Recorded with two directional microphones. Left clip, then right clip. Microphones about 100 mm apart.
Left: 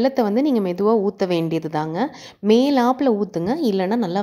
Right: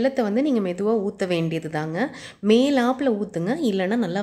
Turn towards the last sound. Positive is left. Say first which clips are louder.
# left 3 dB
turn(degrees=35)  # may be behind; listen again after turning